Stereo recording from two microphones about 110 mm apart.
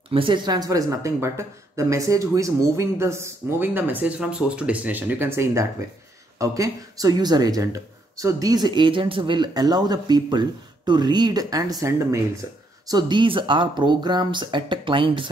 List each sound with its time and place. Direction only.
0.1 s speech: 50° right (ahead or behind); by 12.2 s 25° right (ahead or behind)
12.8 s speech: 40° right (ahead or behind)